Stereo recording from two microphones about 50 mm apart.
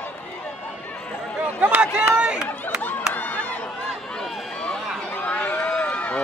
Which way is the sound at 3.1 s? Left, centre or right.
Left.